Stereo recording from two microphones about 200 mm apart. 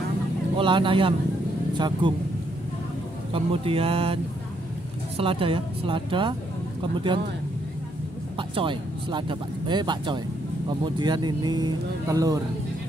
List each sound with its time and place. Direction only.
0.6 s speech: 25° right (ahead or behind)
3.3 s speech: 30° right (ahead or behind)
8.4 s speech: 25° right (ahead or behind)